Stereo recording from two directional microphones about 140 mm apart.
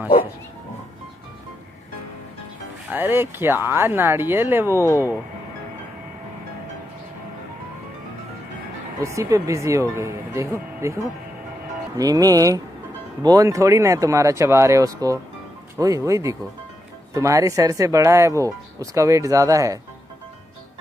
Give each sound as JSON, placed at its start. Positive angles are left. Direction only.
{"t": 2.9, "sound": "speech", "side_deg": -15}
{"t": 9.0, "sound": "speech", "side_deg": -20}
{"t": 12.0, "sound": "speech", "side_deg": -25}